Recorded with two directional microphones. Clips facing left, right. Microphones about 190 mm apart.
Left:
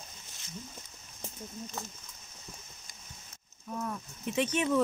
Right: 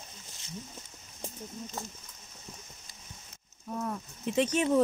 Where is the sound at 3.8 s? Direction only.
35° right (ahead or behind).